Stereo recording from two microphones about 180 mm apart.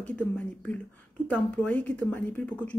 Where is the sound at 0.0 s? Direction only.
5° left (ahead or behind).